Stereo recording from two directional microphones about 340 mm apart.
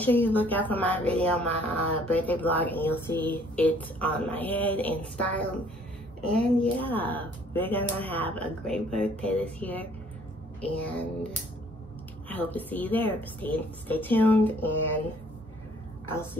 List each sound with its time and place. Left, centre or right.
0.0 s speech: centre
12.3 s speech: centre